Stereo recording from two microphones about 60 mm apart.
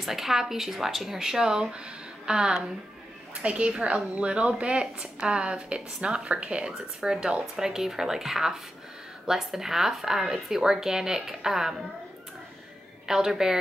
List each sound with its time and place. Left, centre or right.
0.0 s a woman's voice: centre
13.0 s a woman's voice: centre